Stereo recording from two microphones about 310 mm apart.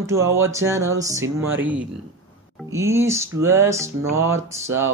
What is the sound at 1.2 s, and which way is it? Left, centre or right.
Speech, right.